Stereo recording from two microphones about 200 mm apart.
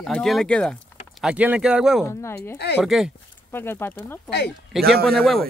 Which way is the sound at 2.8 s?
Centre (ahead or behind).